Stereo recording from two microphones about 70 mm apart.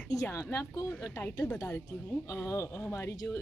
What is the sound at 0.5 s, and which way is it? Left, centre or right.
Speech, left.